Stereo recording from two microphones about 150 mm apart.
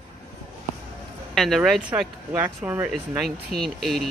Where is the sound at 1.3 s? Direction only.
Centre (ahead or behind).